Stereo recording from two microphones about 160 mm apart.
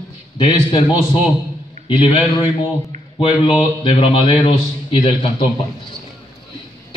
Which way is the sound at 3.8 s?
35° left (ahead or behind).